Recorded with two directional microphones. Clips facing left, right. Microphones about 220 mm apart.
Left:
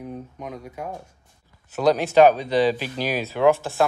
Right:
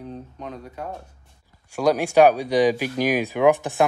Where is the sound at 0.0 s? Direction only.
10° left (ahead or behind).